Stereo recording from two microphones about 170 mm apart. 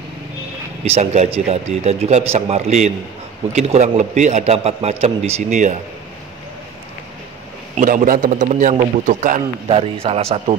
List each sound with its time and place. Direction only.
0.8 s a man's voice: 40° right (ahead or behind)
7.7 s a man's voice: 50° right (ahead or behind)
9.7 s a man's voice: 35° right (ahead or behind)